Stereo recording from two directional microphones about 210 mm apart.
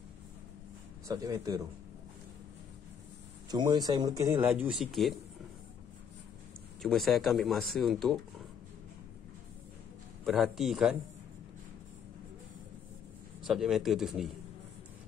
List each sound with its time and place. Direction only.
1.0 s speech: 15° right (ahead or behind)
3.4 s speech: 20° right (ahead or behind); by 5.1 s centre (ahead or behind)
6.8 s speech: centre (ahead or behind)
10.2 s speech: centre (ahead or behind)
13.4 s speech: centre (ahead or behind)